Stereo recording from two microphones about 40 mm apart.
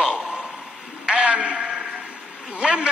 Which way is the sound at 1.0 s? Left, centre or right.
Centre.